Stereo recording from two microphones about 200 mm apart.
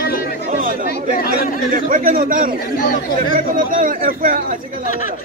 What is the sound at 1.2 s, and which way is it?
Speech, 50° left (ahead or behind).